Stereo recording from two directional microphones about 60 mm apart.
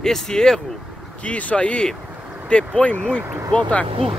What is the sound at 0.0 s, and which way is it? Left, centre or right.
Speech, centre.